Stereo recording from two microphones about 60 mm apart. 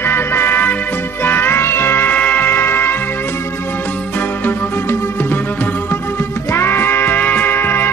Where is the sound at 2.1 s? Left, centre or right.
Left.